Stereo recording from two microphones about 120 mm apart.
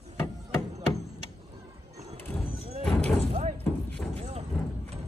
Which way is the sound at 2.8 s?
5° left (ahead or behind).